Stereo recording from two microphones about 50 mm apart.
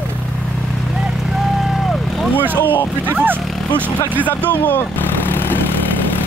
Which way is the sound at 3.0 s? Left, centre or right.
Right.